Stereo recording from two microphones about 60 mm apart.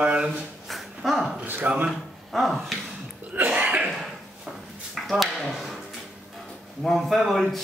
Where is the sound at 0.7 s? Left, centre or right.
Centre.